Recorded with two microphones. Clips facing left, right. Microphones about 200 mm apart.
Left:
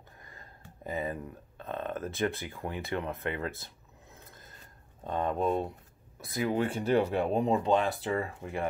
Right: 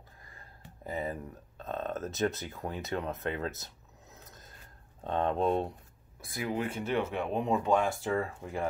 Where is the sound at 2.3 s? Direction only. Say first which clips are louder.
Left 1 dB; 55° left (ahead or behind).